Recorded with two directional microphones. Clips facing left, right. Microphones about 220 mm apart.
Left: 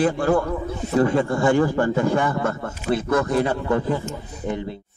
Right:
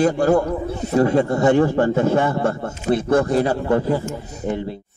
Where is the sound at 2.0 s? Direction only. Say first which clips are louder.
Right 3 dB; 25° right (ahead or behind).